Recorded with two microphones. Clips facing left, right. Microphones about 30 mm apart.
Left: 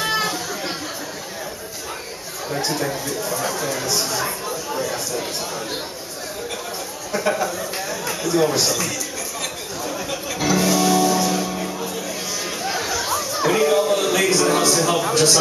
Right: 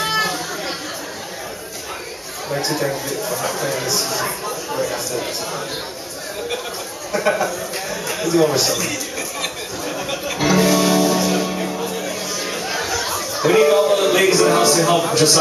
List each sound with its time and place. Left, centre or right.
0.0 s chatter: centre
2.5 s speech: centre
7.1 s speech: centre
9.4 s music: centre
12.4 s a sound: centre